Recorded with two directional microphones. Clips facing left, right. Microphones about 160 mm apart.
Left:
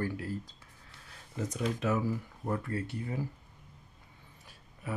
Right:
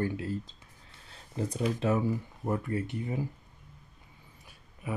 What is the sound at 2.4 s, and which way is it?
Speech, 20° right (ahead or behind).